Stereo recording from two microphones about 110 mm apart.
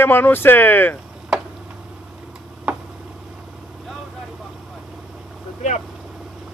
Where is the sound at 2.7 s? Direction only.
10° right (ahead or behind).